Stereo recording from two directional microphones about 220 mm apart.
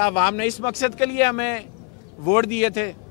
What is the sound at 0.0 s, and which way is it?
A man's voice, 10° left (ahead or behind).